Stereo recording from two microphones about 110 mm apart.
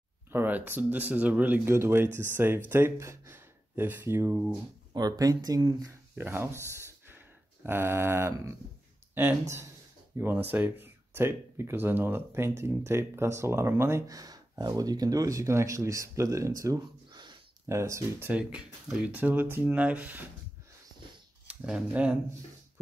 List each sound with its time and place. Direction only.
0.3 s speech: 15° right (ahead or behind)
4.9 s speech: 35° right (ahead or behind)
6.1 s speech: 20° right (ahead or behind); by 17.4 s 40° right (ahead or behind)
17.6 s speech: 25° right (ahead or behind)
18.3 s speech: 10° right (ahead or behind)
21.5 s speech: 10° right (ahead or behind)